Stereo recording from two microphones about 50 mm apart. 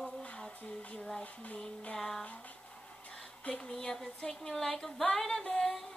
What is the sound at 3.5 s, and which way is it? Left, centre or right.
Music, centre.